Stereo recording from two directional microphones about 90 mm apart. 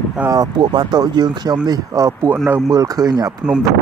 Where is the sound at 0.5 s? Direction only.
55° right (ahead or behind).